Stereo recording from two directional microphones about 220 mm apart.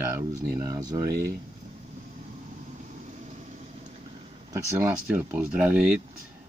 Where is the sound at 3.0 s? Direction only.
30° right (ahead or behind).